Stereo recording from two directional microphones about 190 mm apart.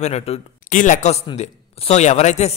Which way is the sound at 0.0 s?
35° left (ahead or behind).